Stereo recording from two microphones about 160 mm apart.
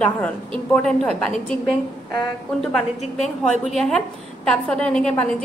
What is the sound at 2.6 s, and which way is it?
A woman's voice, centre (ahead or behind).